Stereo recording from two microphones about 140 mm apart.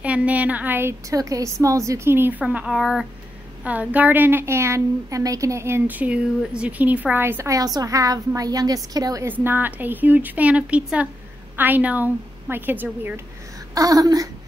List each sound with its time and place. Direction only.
0.0 s a woman's voice: 10° right (ahead or behind); by 9.3 s 25° right (ahead or behind)
9.3 s a woman's voice: 15° right (ahead or behind)
13.7 s a woman's voice: 25° right (ahead or behind)